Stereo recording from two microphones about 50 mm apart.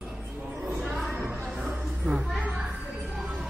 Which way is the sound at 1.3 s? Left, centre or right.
Right.